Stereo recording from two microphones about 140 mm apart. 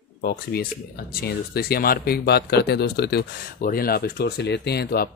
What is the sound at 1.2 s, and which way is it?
Speech, 90° left.